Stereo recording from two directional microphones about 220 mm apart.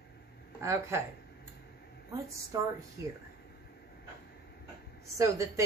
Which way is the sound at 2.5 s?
15° right (ahead or behind).